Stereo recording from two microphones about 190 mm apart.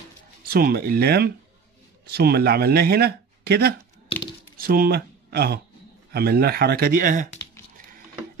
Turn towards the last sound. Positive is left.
turn(degrees=-45)  # may be behind; listen again after turning